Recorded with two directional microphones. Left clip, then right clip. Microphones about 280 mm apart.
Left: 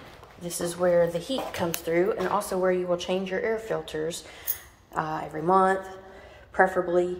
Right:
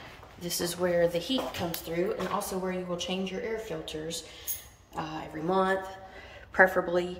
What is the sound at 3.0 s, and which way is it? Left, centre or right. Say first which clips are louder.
Speech: left 6 dB; centre.